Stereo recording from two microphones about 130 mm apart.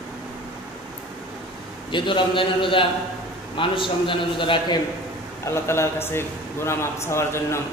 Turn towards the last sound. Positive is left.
turn(degrees=20)  # may be behind; listen again after turning